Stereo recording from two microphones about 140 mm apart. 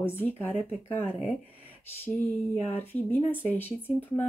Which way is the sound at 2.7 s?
15° left (ahead or behind).